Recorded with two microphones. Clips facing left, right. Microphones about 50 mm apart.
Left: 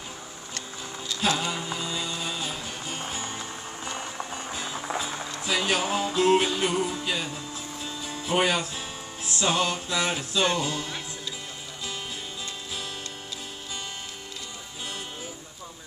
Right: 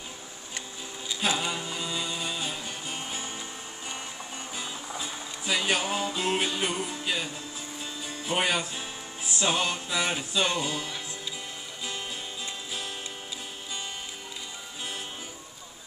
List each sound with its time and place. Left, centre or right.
0.6 s music: centre
4.7 s music: left
5.4 s music: centre